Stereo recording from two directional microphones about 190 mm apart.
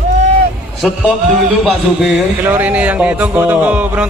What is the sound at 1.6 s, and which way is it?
Speech, centre (ahead or behind).